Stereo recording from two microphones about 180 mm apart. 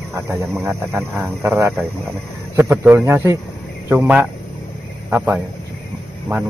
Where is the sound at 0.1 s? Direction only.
15° right (ahead or behind).